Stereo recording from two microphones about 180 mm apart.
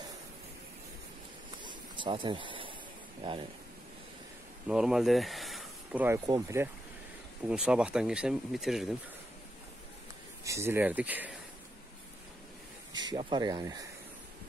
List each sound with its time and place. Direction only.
1.6 s a sound: 25° right (ahead or behind)
3.2 s speech: 30° right (ahead or behind)
4.6 s speech: 5° right (ahead or behind)
7.4 s speech: 5° right (ahead or behind)
10.4 s speech: 15° right (ahead or behind)
13.1 s speech: 25° right (ahead or behind)